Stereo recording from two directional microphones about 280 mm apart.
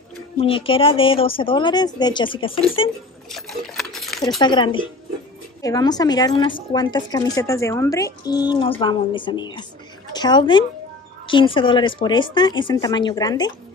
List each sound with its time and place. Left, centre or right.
0.4 s speech: centre
3.3 s a sound: centre
4.4 s a woman's voice: centre